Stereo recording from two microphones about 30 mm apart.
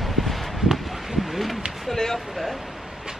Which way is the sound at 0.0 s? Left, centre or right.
Centre.